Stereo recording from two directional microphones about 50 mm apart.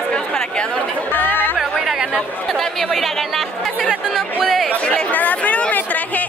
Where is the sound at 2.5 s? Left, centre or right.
Centre.